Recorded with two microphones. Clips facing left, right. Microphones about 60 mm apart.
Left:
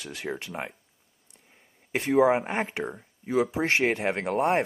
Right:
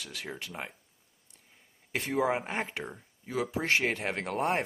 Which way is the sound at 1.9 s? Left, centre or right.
Left.